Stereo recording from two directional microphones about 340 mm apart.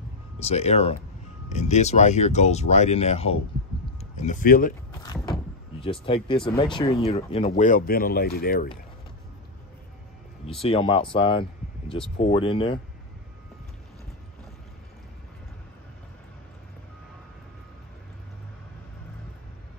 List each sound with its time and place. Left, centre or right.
0.4 s speech: centre
5.0 s door: centre
6.5 s speech: centre
10.6 s speech: centre